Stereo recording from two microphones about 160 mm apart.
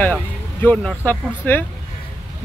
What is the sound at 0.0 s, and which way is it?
Speech, 10° left (ahead or behind).